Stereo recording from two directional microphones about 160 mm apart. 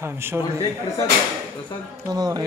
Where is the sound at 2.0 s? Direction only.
25° right (ahead or behind).